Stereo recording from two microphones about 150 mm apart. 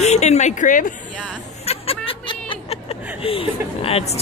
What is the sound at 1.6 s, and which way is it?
Music, 40° left (ahead or behind).